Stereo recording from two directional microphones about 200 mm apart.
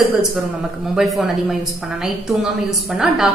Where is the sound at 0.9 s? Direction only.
Centre (ahead or behind).